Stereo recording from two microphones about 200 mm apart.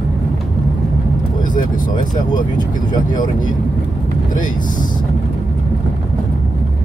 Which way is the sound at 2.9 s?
20° left (ahead or behind).